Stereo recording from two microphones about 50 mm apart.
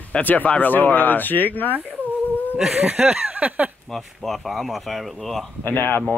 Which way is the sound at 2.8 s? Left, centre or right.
Right.